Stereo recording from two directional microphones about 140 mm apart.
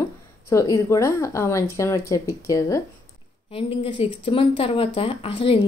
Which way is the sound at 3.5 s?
45° left (ahead or behind).